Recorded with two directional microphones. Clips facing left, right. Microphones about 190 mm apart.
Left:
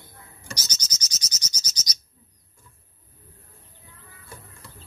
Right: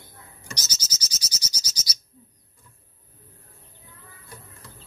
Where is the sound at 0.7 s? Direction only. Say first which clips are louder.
Even; 10° right (ahead or behind).